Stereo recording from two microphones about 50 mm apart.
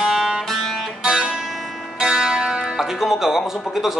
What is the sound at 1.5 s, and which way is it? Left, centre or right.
Music, centre.